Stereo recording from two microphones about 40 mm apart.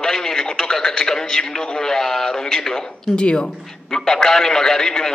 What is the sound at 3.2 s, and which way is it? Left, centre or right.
Speech, left.